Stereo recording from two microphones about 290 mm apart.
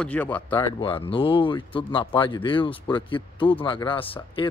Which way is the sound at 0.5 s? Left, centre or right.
Centre.